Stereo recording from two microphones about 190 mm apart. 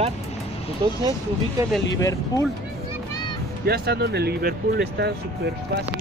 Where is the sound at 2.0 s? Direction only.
15° left (ahead or behind).